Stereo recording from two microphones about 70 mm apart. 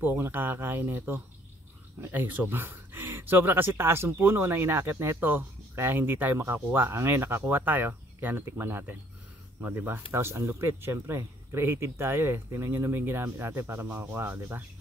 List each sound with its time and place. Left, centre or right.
0.0 s speech: right